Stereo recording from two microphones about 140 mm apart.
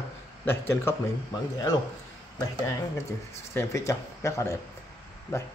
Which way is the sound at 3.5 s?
20° left (ahead or behind).